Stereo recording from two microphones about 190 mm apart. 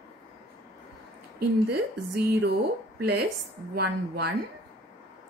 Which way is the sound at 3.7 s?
55° right (ahead or behind).